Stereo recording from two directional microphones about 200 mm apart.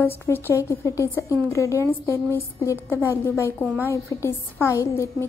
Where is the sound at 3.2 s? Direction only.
10° left (ahead or behind).